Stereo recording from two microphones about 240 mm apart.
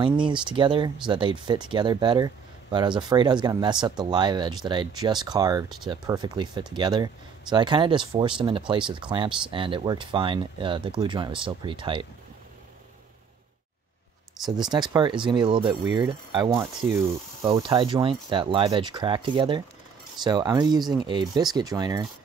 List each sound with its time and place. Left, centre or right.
0.0 s speech: centre
14.6 s speech: centre